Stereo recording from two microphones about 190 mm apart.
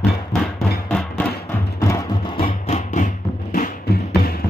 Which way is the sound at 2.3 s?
30° left (ahead or behind).